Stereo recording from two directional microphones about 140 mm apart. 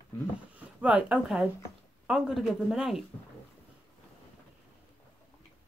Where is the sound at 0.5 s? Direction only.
10° right (ahead or behind).